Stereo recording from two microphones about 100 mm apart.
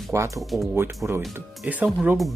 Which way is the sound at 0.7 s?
25° right (ahead or behind).